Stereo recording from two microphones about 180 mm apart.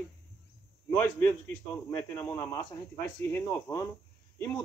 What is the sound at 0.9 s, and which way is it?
A man's voice, 10° left (ahead or behind).